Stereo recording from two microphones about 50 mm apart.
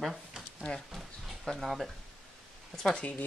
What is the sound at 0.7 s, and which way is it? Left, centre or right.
Speech, centre.